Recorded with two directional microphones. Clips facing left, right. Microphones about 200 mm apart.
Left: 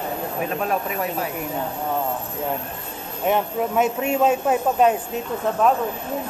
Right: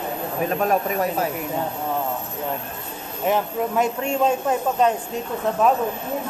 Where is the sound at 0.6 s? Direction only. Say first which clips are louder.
Right 5 dB; 45° right (ahead or behind).